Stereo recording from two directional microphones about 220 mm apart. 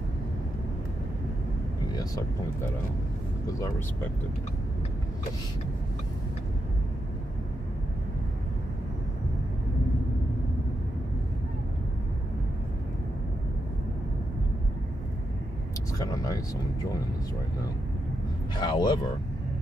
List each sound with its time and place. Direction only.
3.4 s speech: 15° left (ahead or behind)
16.0 s a sound: 15° left (ahead or behind)
18.6 s speech: 20° left (ahead or behind)